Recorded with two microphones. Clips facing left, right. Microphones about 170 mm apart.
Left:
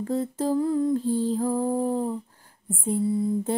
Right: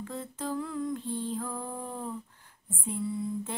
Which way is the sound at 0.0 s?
35° left (ahead or behind).